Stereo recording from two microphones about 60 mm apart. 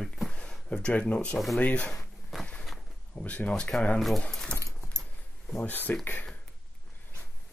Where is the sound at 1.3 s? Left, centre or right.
Centre.